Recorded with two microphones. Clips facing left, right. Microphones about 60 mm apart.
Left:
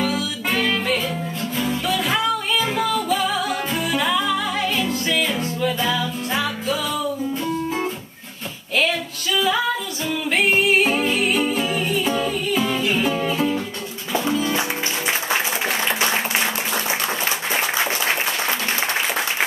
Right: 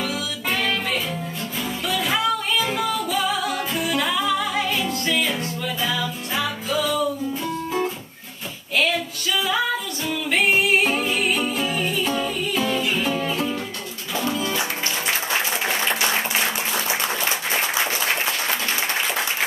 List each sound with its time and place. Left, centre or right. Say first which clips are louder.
0.0 s music: left 4 dB; centre
8.7 s music: left 1 dB; centre
15.6 s applause: left 1 dB; centre
16.0 s applause: left 1 dB; centre